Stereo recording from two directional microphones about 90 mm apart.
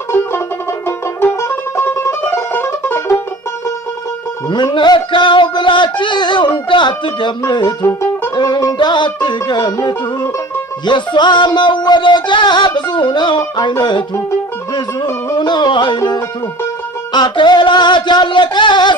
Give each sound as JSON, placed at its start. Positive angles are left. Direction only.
{"t": 0.8, "sound": "music", "side_deg": 25}
{"t": 4.7, "sound": "music", "side_deg": 60}
{"t": 7.8, "sound": "music", "side_deg": 30}
{"t": 8.4, "sound": "music", "side_deg": 45}
{"t": 8.7, "sound": "music", "side_deg": 60}
{"t": 15.3, "sound": "music", "side_deg": 60}
{"t": 17.1, "sound": "music", "side_deg": 55}